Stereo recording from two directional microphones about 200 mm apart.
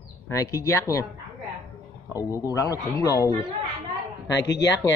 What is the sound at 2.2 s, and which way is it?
A man's voice, 15° left (ahead or behind).